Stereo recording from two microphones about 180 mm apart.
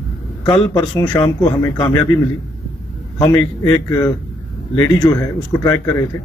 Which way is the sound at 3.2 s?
20° left (ahead or behind).